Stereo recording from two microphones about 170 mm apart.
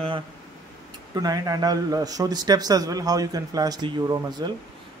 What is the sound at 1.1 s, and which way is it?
A man's voice, 20° right (ahead or behind).